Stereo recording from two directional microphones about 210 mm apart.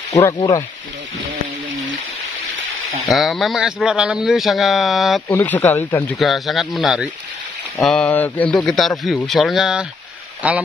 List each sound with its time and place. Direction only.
0.1 s speech: 15° left (ahead or behind)
3.1 s speech: centre (ahead or behind)
5.3 s speech: 10° left (ahead or behind)
6.1 s speech: centre (ahead or behind)